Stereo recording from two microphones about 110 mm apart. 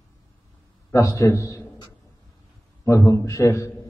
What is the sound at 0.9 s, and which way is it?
Speech, 30° left (ahead or behind).